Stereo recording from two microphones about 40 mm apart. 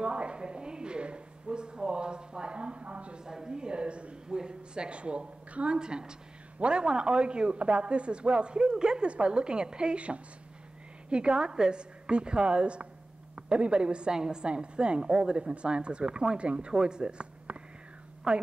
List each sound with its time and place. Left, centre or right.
0.0 s speech: right
3.3 s speech: centre
16.7 s speech: centre